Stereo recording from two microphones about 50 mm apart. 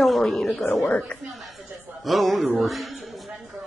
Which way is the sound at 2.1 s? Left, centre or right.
Centre.